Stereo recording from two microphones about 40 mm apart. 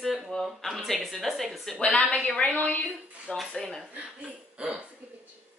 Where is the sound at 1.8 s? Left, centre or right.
Left.